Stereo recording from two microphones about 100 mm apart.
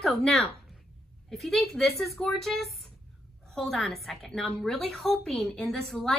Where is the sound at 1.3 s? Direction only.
5° left (ahead or behind).